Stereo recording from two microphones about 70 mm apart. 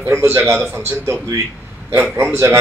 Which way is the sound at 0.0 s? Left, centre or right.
Right.